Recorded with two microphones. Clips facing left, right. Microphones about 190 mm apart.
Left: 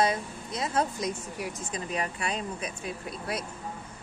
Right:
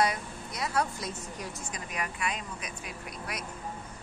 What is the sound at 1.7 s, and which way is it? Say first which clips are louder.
Speech: left 6 dB; 30° left (ahead or behind).